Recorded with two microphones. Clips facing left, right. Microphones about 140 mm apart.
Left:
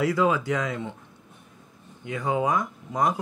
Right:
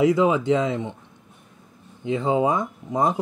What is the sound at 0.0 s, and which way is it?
Speech, 20° right (ahead or behind).